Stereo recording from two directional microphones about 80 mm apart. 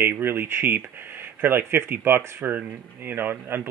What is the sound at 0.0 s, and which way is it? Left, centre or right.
Speech, right.